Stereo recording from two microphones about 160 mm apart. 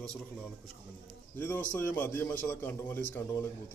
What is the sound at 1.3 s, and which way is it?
A man's voice, 10° left (ahead or behind).